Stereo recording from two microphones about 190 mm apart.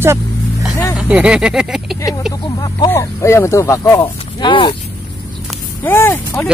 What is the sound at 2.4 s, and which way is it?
Speech, 20° left (ahead or behind).